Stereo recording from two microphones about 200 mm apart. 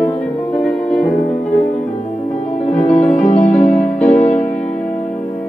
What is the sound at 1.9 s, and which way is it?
Music, 35° left (ahead or behind).